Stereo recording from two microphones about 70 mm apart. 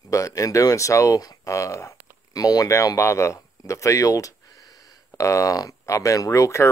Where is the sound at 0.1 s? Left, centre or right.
Left.